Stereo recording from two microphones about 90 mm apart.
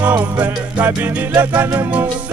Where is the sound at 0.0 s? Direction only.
15° right (ahead or behind).